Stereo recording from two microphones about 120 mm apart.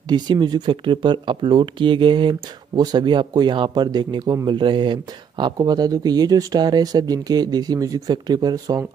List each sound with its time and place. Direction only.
0.1 s speech: 35° right (ahead or behind)